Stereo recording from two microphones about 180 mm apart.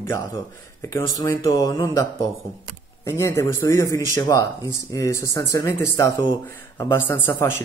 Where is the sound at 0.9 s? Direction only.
20° left (ahead or behind).